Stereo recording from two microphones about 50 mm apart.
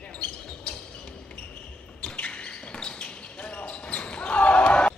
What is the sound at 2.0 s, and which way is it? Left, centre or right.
Basketball bounce, left.